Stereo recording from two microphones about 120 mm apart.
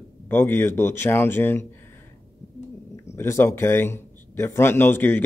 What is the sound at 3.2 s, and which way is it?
Speech, 20° left (ahead or behind).